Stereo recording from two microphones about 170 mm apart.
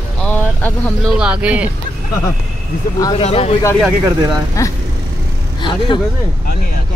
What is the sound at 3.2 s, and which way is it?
Speech, 40° left (ahead or behind).